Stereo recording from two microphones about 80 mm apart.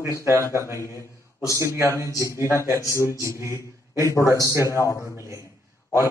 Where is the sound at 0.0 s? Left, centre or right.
Right.